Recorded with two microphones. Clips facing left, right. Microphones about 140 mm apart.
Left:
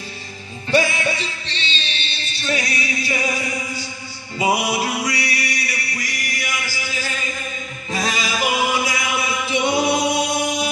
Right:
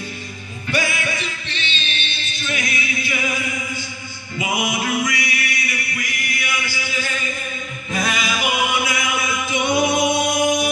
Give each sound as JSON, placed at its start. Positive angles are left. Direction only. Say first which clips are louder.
{"t": 0.7, "sound": "music", "louder": "left 4 dB", "side_deg": 30}
{"t": 7.9, "sound": "chant", "louder": "even", "side_deg": 35}
{"t": 9.5, "sound": "singing", "louder": "even", "side_deg": 30}